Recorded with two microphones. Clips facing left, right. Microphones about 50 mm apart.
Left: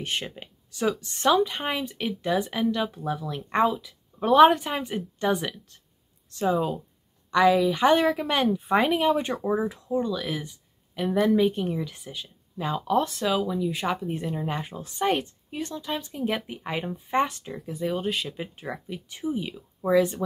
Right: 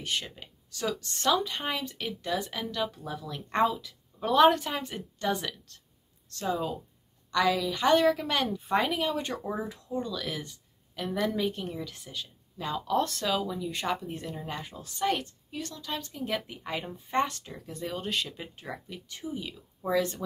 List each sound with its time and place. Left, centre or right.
0.0 s a woman's voice: left; by 13.9 s centre
14.0 s a woman's voice: left